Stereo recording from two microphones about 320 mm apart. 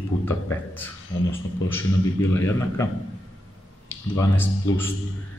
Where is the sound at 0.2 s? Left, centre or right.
Centre.